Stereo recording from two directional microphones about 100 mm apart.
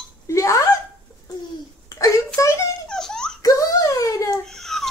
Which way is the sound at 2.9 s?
5° left (ahead or behind).